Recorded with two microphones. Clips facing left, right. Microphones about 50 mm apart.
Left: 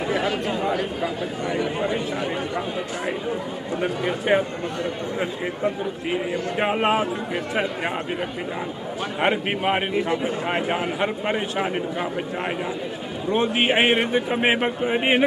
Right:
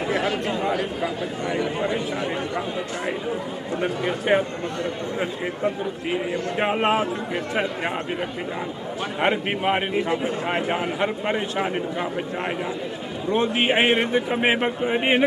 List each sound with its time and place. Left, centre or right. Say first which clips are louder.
0.1 s chatter: even; centre
0.6 s a man's voice: even; centre
3.8 s a man's voice: even; centre
6.1 s a man's voice: even; centre
9.2 s speech: even; centre
9.9 s a man's voice: even; centre